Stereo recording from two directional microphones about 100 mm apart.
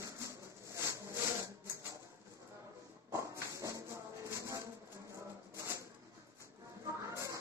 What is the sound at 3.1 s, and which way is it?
Tambourine, 30° right (ahead or behind).